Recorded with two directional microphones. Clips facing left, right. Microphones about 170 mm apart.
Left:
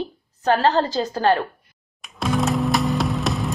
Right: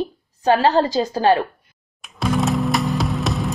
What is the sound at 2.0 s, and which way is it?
Music, centre (ahead or behind).